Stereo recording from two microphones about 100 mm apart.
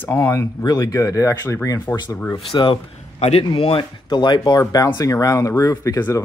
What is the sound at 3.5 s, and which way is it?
Speech, 65° left (ahead or behind).